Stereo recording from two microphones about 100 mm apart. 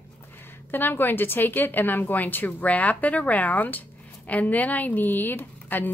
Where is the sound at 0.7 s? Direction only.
20° left (ahead or behind).